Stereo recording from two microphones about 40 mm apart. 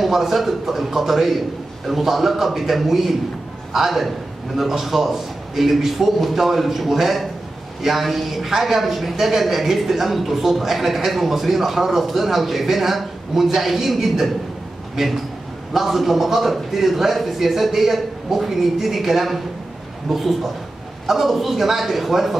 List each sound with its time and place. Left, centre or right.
0.0 s a woman's voice: centre
15.7 s a woman's voice: centre